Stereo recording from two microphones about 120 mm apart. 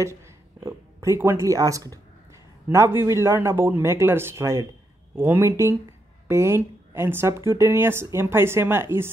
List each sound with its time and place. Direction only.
0.0 s speech: 25° right (ahead or behind)